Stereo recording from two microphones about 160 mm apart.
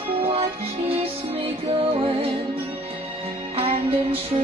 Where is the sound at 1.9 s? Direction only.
35° right (ahead or behind).